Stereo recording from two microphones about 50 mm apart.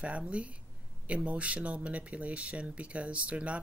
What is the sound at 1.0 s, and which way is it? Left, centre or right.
Speech, right.